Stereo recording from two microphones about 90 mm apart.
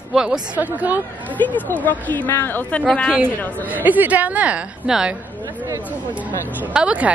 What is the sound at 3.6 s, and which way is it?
A woman's voice, 20° right (ahead or behind).